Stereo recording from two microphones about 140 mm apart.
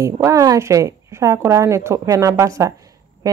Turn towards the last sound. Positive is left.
turn(degrees=-25)  # may be behind; listen again after turning